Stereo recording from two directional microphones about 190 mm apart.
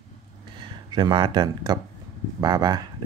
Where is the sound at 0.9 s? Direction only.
25° right (ahead or behind).